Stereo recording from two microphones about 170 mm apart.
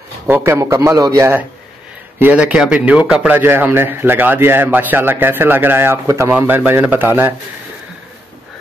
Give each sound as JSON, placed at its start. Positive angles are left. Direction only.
{"t": 0.3, "sound": "a man's voice", "side_deg": -15}